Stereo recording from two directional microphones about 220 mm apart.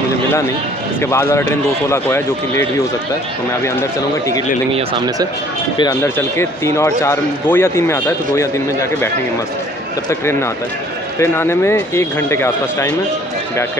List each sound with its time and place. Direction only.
1.0 s speech: 10° left (ahead or behind)
4.7 s speech: 20° right (ahead or behind)
5.8 s speech: 15° left (ahead or behind)